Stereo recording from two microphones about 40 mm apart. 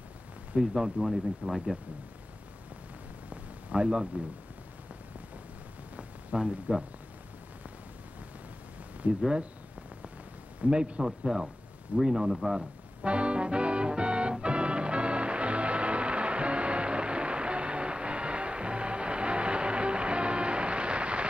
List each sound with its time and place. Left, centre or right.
0.6 s speech: centre
3.7 s a man's voice: right
6.3 s a man's voice: right
9.0 s speech: right
10.6 s a man's voice: right
11.1 s speech: centre
13.0 s music: right